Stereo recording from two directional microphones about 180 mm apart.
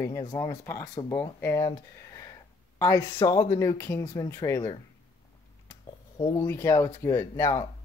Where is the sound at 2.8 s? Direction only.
20° left (ahead or behind).